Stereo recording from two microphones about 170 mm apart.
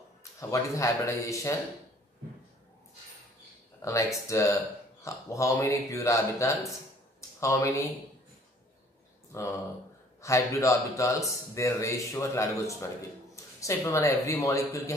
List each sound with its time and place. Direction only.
0.2 s speech: 20° left (ahead or behind)
3.8 s speech: 20° left (ahead or behind)
7.2 s a sound: 15° left (ahead or behind)
9.3 s speech: 15° left (ahead or behind)